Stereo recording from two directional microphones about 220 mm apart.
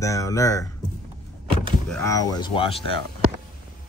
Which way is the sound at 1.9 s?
15° left (ahead or behind).